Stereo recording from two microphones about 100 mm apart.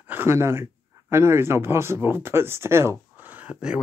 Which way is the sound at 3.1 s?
15° right (ahead or behind).